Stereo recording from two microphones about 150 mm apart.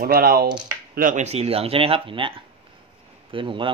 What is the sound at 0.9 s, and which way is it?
Speech, 60° right (ahead or behind).